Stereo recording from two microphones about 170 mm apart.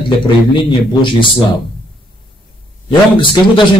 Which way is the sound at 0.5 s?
30° left (ahead or behind).